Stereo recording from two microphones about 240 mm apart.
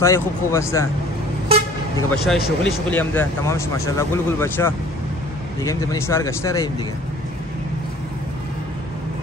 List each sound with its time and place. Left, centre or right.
0.0 s speech: centre
2.2 s speech: centre